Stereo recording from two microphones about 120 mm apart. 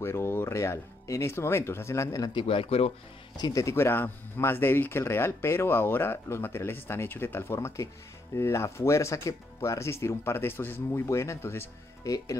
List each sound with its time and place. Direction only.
0.0 s speech: 20° left (ahead or behind)
2.3 s speech: 50° left (ahead or behind)
3.3 s speech: 30° left (ahead or behind)